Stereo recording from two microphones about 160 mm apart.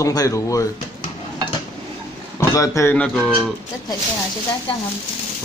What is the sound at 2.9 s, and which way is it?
Speech, 5° left (ahead or behind).